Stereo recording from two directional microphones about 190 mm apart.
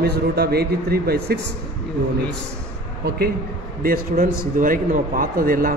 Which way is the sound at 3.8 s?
50° right (ahead or behind).